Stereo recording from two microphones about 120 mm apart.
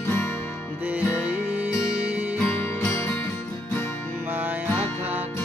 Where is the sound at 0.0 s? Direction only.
20° left (ahead or behind).